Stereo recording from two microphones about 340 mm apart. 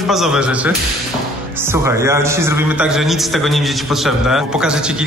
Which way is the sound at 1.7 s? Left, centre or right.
Centre.